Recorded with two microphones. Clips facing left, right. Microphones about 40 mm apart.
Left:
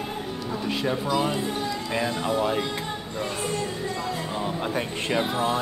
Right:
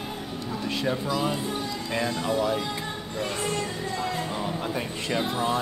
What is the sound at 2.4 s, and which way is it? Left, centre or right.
Speech, left.